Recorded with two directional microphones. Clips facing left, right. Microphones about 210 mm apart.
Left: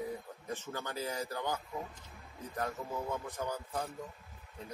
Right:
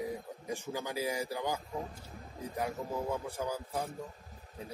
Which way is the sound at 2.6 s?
10° right (ahead or behind).